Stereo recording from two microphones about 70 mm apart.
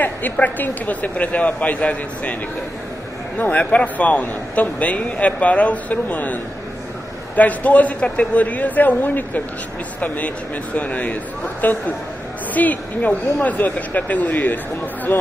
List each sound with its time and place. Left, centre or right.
0.0 s a man's voice: left
3.3 s a man's voice: left